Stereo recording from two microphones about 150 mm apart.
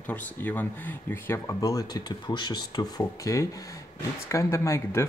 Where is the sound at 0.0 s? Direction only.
10° left (ahead or behind).